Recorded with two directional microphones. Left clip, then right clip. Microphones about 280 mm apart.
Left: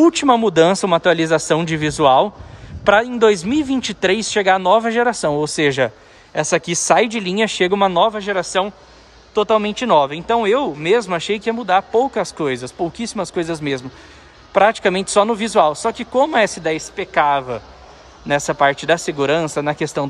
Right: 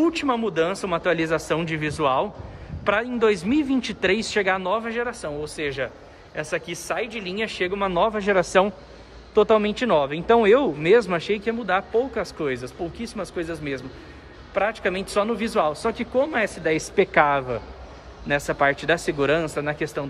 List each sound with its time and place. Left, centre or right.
0.0 s speech: centre